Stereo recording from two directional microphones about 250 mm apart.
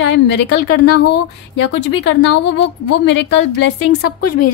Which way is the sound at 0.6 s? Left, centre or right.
Left.